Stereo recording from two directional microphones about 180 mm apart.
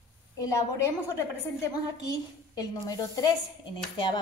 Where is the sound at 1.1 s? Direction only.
20° left (ahead or behind).